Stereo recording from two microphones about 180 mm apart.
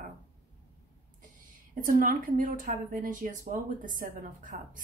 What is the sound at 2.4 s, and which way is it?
A woman's voice, 45° right (ahead or behind).